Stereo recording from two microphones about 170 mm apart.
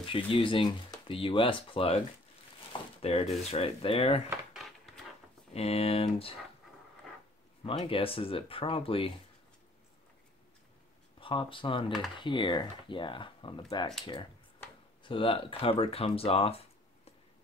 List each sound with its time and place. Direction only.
0.0 s speech: 30° left (ahead or behind)
3.0 s speech: 35° left (ahead or behind)
4.6 s a sound: centre (ahead or behind)
5.5 s speech: 35° left (ahead or behind)
7.6 s speech: 35° left (ahead or behind)
11.1 s speech: 30° left (ahead or behind)
15.0 s speech: 30° left (ahead or behind)